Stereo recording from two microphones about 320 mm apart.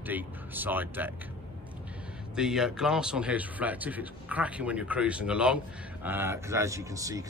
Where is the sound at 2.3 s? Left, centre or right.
Centre.